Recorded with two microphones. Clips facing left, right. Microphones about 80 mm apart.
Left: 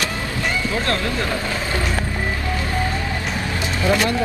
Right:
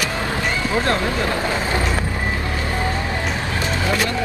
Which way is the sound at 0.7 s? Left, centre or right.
Right.